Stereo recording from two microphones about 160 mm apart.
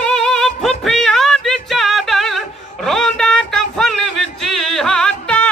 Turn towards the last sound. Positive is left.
turn(degrees=5)  # may be behind; listen again after turning